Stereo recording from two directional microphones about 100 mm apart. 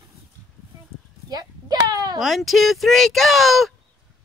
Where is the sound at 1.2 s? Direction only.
40° right (ahead or behind).